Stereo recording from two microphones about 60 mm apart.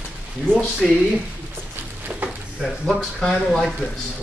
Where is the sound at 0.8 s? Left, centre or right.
Centre.